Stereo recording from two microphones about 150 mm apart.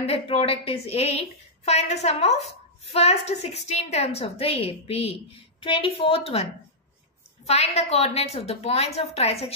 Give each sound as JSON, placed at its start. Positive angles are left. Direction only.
{"t": 0.0, "sound": "a woman's voice", "side_deg": 40}
{"t": 7.4, "sound": "a woman's voice", "side_deg": 45}